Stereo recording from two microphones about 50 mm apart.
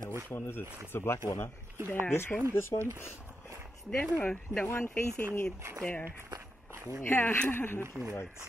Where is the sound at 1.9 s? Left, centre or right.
Left.